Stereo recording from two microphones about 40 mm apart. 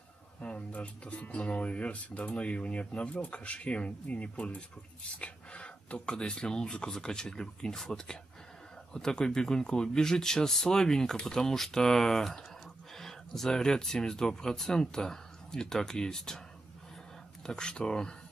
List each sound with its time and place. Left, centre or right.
0.4 s speech: left
5.2 s a sound: left
6.0 s speech: left
17.5 s speech: centre